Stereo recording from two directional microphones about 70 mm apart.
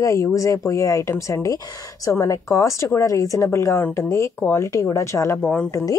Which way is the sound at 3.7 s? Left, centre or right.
Left.